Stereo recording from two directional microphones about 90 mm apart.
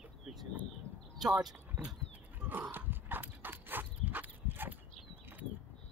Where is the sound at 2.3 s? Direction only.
20° right (ahead or behind).